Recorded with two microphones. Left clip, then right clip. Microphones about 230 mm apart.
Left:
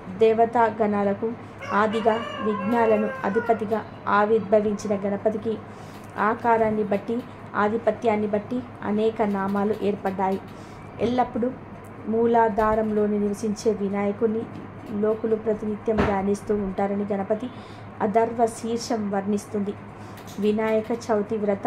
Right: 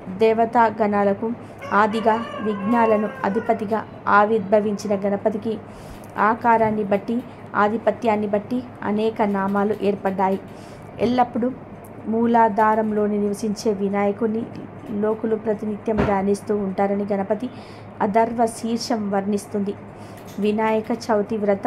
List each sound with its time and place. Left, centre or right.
0.2 s a woman's voice: centre